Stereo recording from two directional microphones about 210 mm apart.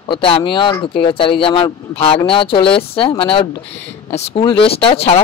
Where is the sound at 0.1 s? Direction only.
25° left (ahead or behind).